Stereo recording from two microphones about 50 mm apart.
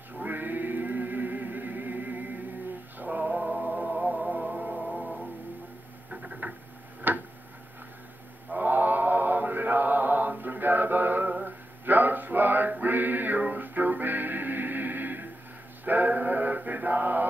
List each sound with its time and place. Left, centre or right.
0.2 s music: right
5.0 s music: centre
6.0 s a sound: right
7.0 s tick-tock: right
8.5 s mantra: right
11.4 s male singing: right
15.8 s mantra: right